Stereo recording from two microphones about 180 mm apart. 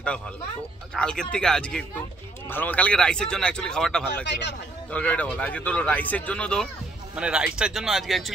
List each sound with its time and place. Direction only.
0.9 s speech: 5° left (ahead or behind)
4.3 s speech: 75° left (ahead or behind)
4.9 s speech: 10° left (ahead or behind)